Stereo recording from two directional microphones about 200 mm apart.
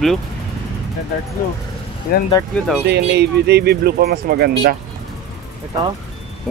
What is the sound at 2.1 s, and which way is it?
Speech, 45° left (ahead or behind).